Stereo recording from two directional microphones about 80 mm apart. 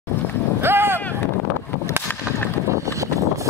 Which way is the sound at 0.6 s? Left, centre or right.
Right.